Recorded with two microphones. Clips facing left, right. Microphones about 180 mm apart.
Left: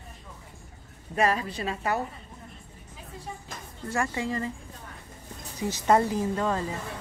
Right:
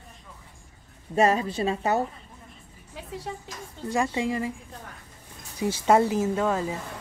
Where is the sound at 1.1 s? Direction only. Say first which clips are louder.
Right 4 dB; 25° right (ahead or behind).